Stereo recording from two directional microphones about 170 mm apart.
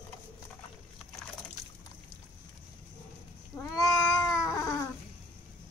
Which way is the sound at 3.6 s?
20° left (ahead or behind).